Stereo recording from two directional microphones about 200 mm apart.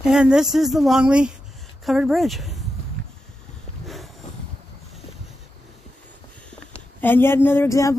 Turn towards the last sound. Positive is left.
turn(degrees=15)  # may be behind; listen again after turning